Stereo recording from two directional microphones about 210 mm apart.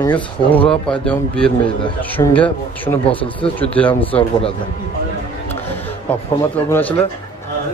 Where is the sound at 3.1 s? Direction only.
25° left (ahead or behind).